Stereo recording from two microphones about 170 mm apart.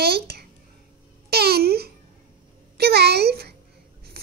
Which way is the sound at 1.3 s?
70° right (ahead or behind).